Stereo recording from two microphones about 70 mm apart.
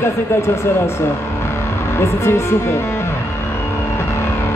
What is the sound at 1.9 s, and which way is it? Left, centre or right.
Speech, left.